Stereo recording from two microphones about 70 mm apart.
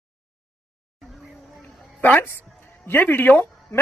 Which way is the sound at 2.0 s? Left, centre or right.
Left.